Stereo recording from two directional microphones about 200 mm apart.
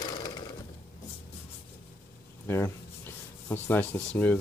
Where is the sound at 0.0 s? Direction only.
20° left (ahead or behind).